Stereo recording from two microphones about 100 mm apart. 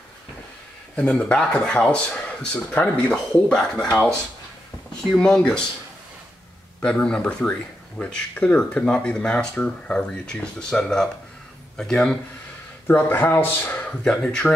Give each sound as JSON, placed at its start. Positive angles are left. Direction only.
{"t": 0.9, "sound": "speech", "side_deg": 10}
{"t": 5.1, "sound": "speech", "side_deg": 10}
{"t": 6.8, "sound": "speech", "side_deg": 10}
{"t": 12.8, "sound": "speech", "side_deg": 20}